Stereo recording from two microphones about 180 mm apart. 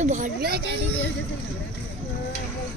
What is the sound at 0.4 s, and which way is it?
Speech, 60° right (ahead or behind).